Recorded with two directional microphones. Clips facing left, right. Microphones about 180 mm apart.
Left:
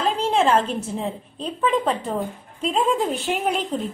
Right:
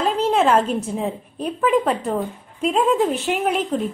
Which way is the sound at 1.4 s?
10° right (ahead or behind).